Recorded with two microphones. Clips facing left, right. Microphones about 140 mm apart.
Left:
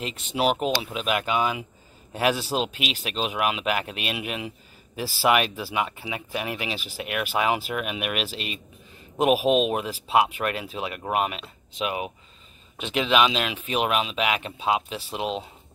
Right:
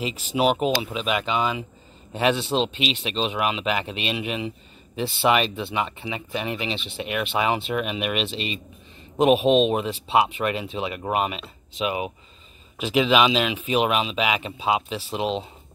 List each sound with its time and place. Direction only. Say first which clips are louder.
0.0 s speech: right 3 dB; centre (ahead or behind)